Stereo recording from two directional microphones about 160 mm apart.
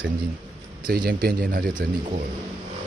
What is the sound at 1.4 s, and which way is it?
Speech, 65° right (ahead or behind).